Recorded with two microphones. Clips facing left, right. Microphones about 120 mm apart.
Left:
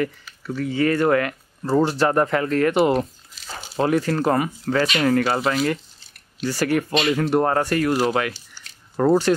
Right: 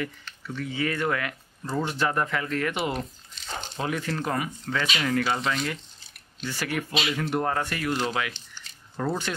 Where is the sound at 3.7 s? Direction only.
40° left (ahead or behind).